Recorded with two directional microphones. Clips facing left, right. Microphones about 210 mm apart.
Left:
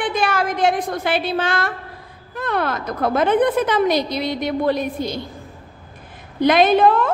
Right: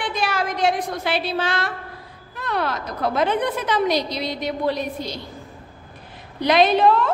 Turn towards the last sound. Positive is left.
turn(degrees=50)  # may be behind; listen again after turning